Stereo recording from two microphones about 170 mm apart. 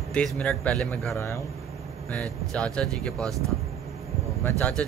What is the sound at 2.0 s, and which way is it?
A man's voice, 5° left (ahead or behind).